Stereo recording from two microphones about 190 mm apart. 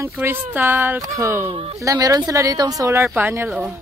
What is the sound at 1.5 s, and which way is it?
Speech, 30° right (ahead or behind).